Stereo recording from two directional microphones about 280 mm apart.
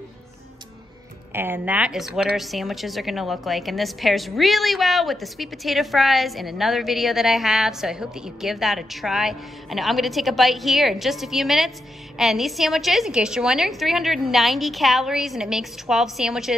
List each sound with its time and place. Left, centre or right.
1.3 s a woman's voice: centre